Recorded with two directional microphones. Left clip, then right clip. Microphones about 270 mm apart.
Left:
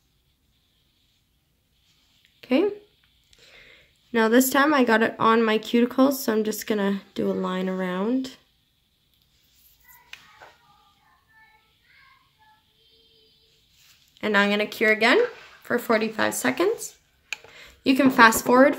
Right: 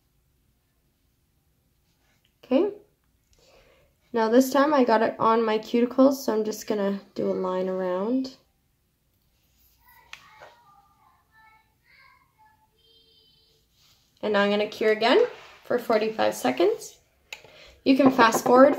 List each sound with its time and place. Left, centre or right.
2.4 s speech: left
4.1 s speech: left
14.2 s a woman's voice: left